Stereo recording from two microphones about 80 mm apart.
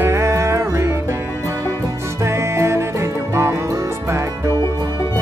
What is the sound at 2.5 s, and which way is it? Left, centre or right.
Music, right.